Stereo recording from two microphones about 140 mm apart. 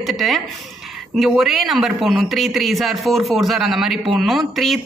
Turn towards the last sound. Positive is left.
turn(degrees=0)  # may be behind; listen again after turning